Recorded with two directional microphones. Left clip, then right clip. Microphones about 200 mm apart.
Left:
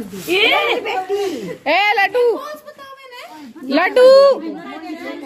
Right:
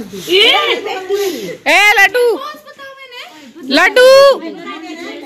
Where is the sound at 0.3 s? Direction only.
30° left (ahead or behind).